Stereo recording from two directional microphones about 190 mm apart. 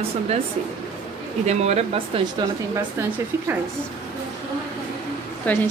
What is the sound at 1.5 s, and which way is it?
Speech, 35° right (ahead or behind).